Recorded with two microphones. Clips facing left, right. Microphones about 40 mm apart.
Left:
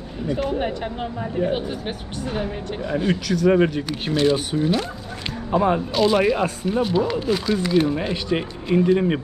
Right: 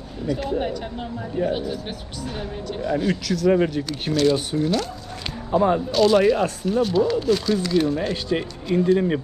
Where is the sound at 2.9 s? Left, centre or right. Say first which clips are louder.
Even; left.